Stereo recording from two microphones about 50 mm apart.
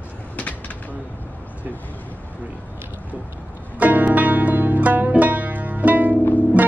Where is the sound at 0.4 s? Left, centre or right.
Left.